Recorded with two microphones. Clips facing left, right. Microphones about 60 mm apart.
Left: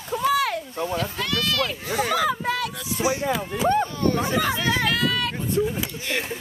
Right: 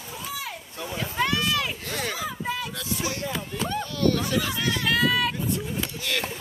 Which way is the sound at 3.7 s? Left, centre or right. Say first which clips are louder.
Left 4 dB; left.